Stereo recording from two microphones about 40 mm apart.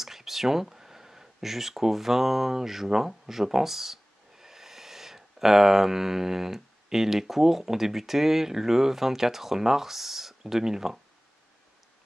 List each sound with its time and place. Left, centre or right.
0.0 s speech: centre